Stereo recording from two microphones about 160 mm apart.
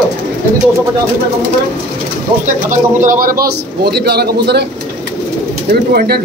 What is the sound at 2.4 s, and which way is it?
Speech, 55° right (ahead or behind).